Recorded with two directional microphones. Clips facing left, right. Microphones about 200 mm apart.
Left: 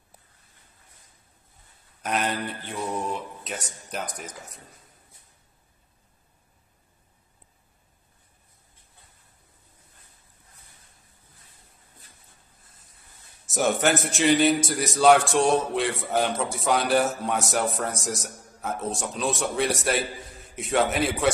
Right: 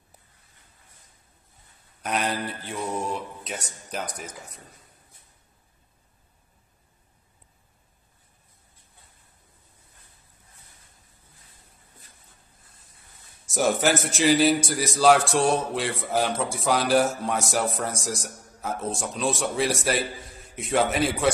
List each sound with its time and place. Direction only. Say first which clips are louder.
2.0 s a man's voice: even; centre (ahead or behind)
13.5 s a man's voice: even; centre (ahead or behind)